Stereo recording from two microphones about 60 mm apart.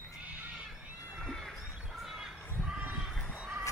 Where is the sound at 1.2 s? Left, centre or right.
Centre.